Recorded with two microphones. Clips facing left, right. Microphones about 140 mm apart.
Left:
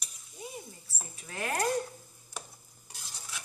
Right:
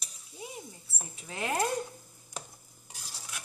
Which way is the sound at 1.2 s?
20° right (ahead or behind).